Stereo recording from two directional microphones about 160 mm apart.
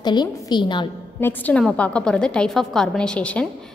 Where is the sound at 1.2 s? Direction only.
10° left (ahead or behind).